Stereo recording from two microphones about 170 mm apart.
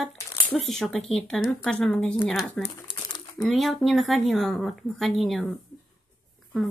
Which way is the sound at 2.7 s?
25° left (ahead or behind).